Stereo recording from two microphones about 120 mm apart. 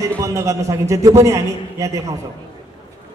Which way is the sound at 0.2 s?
25° right (ahead or behind).